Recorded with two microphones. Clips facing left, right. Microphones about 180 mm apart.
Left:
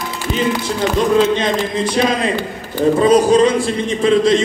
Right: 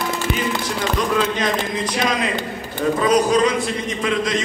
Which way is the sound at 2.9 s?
30° left (ahead or behind).